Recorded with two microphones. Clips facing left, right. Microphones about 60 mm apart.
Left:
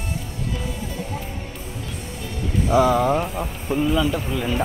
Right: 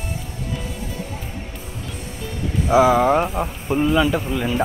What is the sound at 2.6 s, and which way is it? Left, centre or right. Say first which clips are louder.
Speech: right 3 dB; centre.